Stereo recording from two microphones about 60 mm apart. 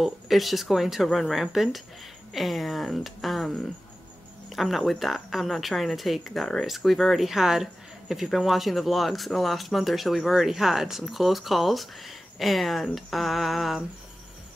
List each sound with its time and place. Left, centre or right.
0.0 s speech: centre